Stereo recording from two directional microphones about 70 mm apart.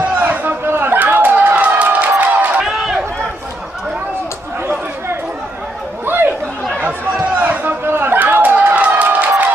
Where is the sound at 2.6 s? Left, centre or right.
Centre.